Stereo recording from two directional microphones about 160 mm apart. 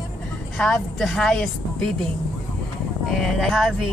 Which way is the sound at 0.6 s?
5° left (ahead or behind).